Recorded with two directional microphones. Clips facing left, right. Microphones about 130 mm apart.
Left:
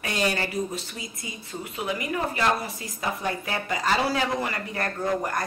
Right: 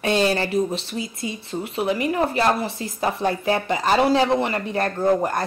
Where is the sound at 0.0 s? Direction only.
25° right (ahead or behind).